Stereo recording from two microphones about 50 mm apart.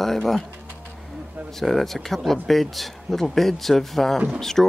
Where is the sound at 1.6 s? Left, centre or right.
Centre.